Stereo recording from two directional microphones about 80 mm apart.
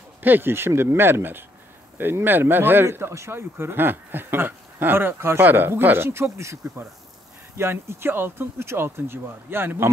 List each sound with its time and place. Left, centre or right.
0.2 s speech: right